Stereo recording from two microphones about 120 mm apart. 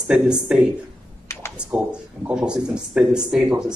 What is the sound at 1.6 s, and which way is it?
Speech, 10° right (ahead or behind).